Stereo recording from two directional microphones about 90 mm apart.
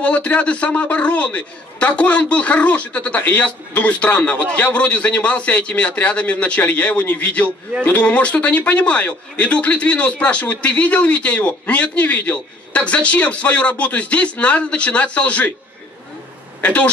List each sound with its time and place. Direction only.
0.0 s a man's voice: 15° left (ahead or behind)
16.6 s a man's voice: 15° left (ahead or behind)